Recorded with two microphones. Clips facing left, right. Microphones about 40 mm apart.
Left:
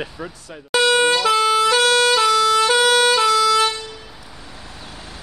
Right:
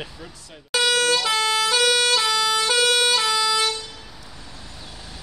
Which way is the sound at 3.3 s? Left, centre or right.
Centre.